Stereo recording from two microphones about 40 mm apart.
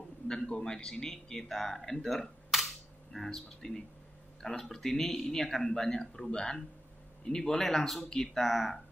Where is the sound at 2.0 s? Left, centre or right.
Centre.